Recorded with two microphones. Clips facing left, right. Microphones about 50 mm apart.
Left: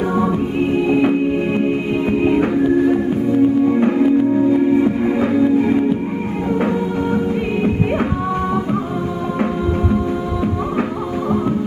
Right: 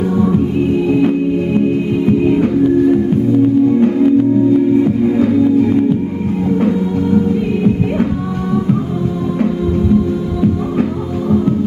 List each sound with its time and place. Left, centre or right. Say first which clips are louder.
0.8 s music: right 2 dB; left